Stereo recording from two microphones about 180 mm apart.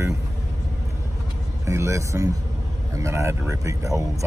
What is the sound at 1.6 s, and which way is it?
Speech, 15° right (ahead or behind).